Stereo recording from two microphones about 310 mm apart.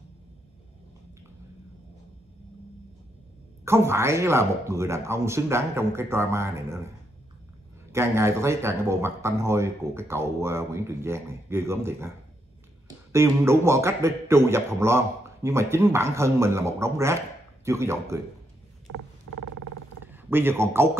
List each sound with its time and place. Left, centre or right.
3.6 s speech: centre
7.9 s speech: centre
13.1 s speech: centre
18.9 s creak: right
20.1 s a man's voice: centre